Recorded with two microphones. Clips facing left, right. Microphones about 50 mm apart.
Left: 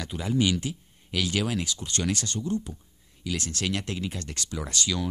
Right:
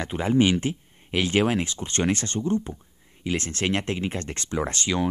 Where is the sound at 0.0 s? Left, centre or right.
Right.